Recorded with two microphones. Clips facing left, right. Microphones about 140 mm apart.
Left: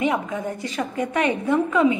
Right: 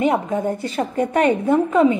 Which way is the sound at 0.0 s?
35° right (ahead or behind).